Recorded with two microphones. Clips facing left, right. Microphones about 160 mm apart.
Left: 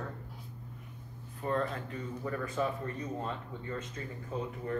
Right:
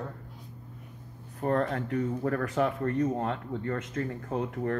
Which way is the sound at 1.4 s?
65° right (ahead or behind).